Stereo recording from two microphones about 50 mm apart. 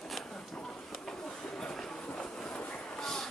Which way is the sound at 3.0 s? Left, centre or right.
Centre.